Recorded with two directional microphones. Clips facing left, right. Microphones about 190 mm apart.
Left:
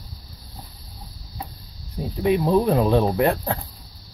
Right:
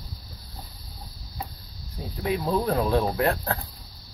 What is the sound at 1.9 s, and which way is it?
Speech, 20° left (ahead or behind).